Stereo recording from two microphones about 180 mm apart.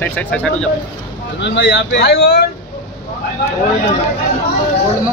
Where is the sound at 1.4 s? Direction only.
75° left (ahead or behind).